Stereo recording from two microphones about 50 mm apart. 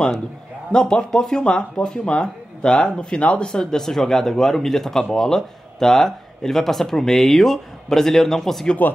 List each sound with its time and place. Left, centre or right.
0.7 s speech: centre
3.4 s speech: centre